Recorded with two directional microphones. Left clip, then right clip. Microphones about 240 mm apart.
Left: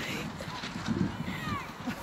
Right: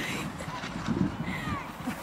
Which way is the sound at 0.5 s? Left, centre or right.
Left.